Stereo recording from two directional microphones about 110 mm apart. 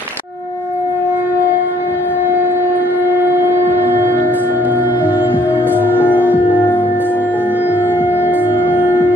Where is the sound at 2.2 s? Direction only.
20° right (ahead or behind).